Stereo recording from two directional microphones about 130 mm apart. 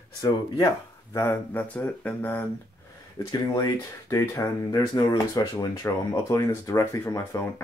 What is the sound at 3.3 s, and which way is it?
Speech, 30° left (ahead or behind).